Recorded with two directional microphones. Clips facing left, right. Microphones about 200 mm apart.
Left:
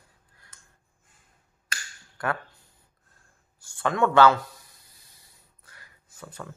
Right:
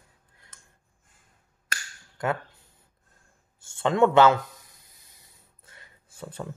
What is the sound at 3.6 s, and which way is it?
Speech, 25° right (ahead or behind).